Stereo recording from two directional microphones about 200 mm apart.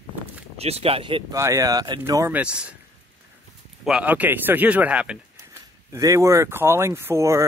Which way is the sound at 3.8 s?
5° right (ahead or behind).